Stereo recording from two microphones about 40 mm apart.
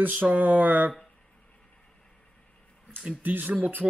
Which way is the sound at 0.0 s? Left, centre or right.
Right.